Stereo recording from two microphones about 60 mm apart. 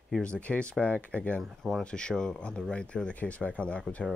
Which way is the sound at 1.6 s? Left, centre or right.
Centre.